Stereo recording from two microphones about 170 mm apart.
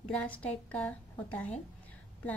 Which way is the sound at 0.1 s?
10° left (ahead or behind).